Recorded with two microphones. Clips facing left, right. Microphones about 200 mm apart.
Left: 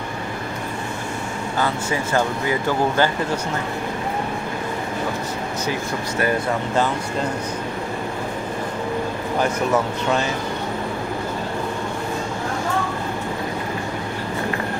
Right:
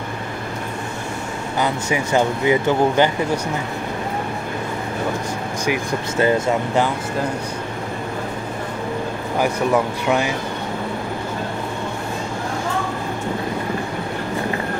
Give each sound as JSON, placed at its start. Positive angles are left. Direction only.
{"t": 1.6, "sound": "speech", "side_deg": -15}
{"t": 5.7, "sound": "speech", "side_deg": -20}
{"t": 10.0, "sound": "speech", "side_deg": -15}